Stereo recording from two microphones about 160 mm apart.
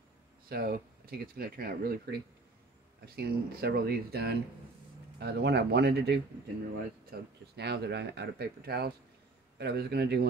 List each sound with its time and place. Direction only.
0.5 s speech: 70° right (ahead or behind); by 10.2 s 90° right